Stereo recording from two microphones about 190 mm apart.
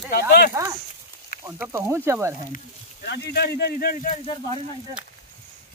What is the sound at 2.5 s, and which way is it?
Speech, 55° left (ahead or behind).